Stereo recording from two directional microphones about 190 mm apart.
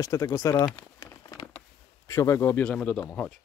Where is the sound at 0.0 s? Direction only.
20° left (ahead or behind).